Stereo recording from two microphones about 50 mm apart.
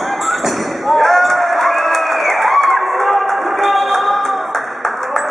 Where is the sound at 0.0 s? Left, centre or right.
Centre.